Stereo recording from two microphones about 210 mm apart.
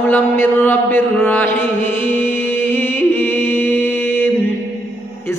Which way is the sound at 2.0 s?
10° left (ahead or behind).